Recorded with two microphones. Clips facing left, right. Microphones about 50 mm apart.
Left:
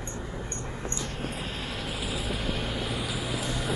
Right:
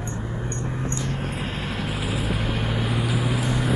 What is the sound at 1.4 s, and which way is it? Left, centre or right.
Vehicle, right.